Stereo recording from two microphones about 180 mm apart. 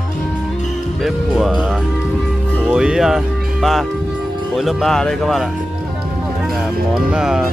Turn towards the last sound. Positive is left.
turn(degrees=-5)  # may be behind; listen again after turning